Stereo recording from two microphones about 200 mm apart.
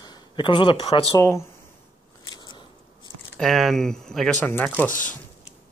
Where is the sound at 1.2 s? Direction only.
15° left (ahead or behind).